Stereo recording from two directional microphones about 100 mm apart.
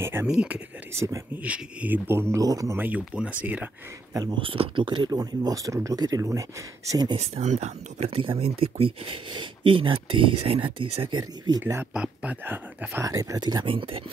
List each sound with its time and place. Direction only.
0.0 s speech: 25° right (ahead or behind)
0.3 s speech: 10° right (ahead or behind)
0.9 s speech: 30° right (ahead or behind)
1.4 s speech: 15° right (ahead or behind)
2.0 s speech: 25° right (ahead or behind)
2.8 s speech: 15° right (ahead or behind)
4.1 s speech: 40° right (ahead or behind)
4.4 s speech: 60° right (ahead or behind); by 7.2 s 45° right (ahead or behind)
7.2 s speech: 90° right; by 11.5 s 50° right (ahead or behind)
11.9 s speech: 10° right (ahead or behind)
13.0 s speech: 35° right (ahead or behind)
13.7 s speech: 60° right (ahead or behind)